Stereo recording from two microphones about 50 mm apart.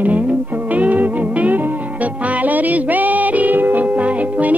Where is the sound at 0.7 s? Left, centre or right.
Right.